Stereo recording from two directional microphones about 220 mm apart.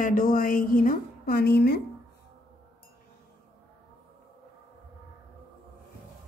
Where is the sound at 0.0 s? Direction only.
40° left (ahead or behind).